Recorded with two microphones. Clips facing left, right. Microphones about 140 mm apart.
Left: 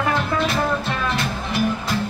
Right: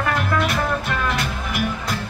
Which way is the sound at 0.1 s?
25° left (ahead or behind).